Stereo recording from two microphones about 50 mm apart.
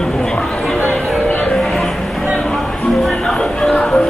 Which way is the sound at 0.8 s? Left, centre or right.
Left.